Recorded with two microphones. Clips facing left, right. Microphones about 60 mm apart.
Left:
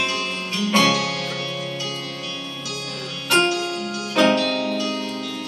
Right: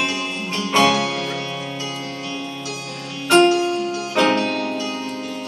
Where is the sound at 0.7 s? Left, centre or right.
Right.